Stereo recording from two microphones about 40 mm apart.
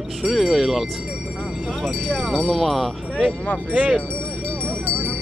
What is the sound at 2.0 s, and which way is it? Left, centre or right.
Speech, centre.